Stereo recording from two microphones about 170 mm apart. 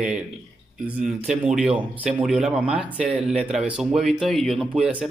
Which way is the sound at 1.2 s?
5° right (ahead or behind).